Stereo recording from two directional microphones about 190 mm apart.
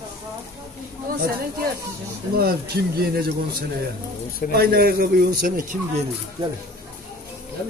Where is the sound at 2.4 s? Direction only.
55° right (ahead or behind).